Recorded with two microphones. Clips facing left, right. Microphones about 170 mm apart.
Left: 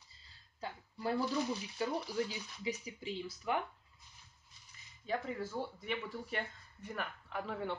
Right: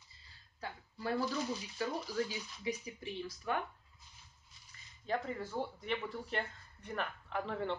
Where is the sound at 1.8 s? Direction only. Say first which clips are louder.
Left 1 dB; 15° left (ahead or behind).